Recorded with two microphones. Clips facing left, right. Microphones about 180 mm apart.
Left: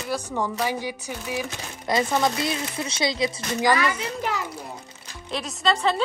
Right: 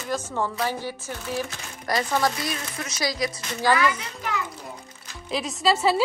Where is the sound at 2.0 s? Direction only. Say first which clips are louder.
Left 2 dB; 20° left (ahead or behind).